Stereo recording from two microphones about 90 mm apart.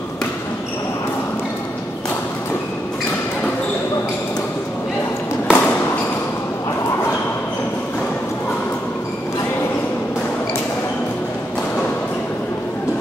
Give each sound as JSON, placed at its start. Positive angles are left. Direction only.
{"t": 5.5, "sound": "fireworks", "side_deg": 20}